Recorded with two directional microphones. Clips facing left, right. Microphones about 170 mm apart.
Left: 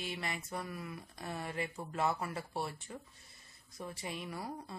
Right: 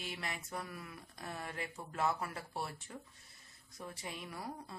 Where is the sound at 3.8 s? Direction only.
Centre (ahead or behind).